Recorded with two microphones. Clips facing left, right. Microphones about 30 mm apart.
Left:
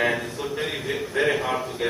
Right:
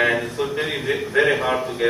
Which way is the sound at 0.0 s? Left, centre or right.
Centre.